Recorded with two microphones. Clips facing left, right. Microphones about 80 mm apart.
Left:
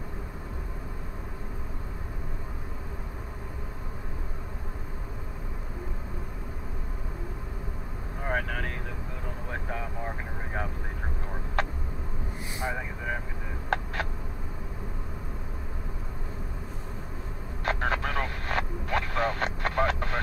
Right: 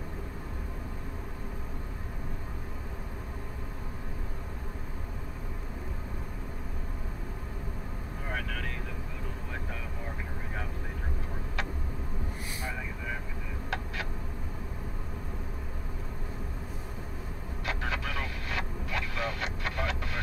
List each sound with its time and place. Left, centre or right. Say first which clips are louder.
8.3 s vehicle: left 6 dB; left
13.7 s a sound: left 7 dB; left
17.6 s vehicle: left 6 dB; left